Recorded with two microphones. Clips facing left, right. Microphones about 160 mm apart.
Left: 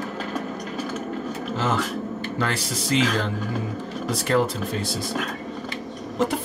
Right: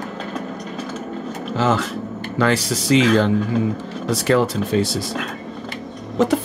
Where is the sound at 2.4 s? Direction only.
90° right.